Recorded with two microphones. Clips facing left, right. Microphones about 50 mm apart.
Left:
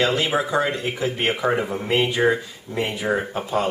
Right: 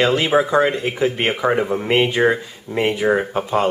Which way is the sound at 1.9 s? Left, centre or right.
Right.